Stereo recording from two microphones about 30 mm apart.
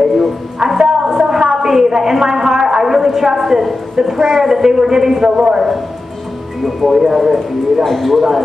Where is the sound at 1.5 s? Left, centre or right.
Centre.